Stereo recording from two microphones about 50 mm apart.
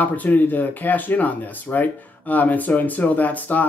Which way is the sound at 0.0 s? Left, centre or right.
Left.